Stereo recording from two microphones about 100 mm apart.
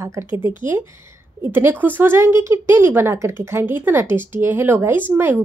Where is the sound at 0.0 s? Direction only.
30° right (ahead or behind).